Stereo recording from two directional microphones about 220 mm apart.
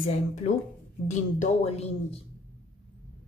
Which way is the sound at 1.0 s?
30° left (ahead or behind).